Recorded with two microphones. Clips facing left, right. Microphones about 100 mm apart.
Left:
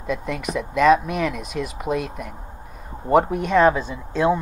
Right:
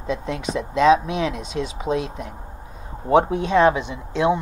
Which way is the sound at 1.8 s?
55° left (ahead or behind).